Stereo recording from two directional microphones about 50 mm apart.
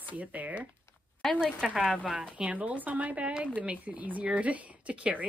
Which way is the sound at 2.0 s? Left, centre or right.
Right.